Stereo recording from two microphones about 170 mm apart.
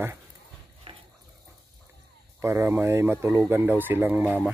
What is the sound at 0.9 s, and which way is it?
Dog, 30° right (ahead or behind).